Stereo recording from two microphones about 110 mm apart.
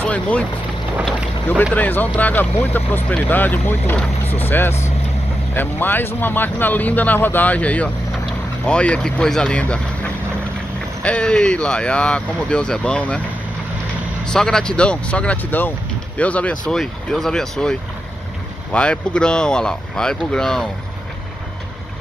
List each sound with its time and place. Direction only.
0.0 s speech: 15° left (ahead or behind)
1.6 s speech: 15° left (ahead or behind)
14.2 s speech: 5° left (ahead or behind)